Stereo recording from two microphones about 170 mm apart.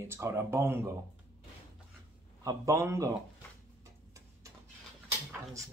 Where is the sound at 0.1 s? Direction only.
15° right (ahead or behind).